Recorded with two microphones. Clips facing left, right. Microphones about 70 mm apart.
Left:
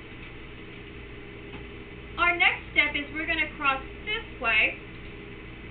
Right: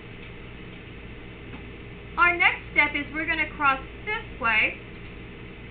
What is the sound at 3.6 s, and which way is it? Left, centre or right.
Speech, right.